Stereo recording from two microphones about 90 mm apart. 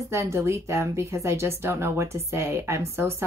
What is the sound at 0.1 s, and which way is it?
Speech, 30° right (ahead or behind).